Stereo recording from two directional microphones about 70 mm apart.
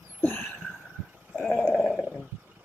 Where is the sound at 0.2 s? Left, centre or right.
Left.